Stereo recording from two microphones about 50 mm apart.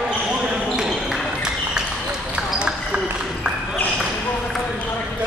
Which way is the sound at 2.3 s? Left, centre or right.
Right.